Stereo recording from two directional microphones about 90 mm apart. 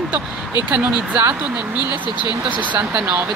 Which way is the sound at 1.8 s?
55° left (ahead or behind).